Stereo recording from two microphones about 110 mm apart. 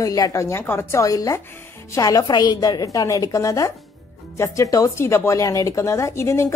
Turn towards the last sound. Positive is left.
turn(degrees=25)  # may be behind; listen again after turning